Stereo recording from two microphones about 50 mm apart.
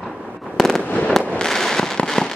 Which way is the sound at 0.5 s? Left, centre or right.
Centre.